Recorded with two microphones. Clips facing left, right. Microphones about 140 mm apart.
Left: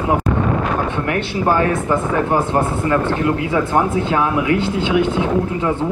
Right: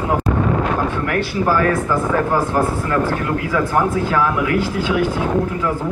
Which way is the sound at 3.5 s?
25° left (ahead or behind).